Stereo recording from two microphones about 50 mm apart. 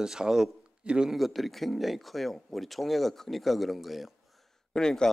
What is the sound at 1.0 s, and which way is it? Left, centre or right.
Speech, centre.